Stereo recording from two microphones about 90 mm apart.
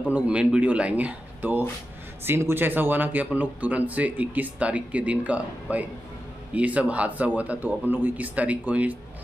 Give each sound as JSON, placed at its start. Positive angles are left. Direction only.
{"t": 0.1, "sound": "speech", "side_deg": -15}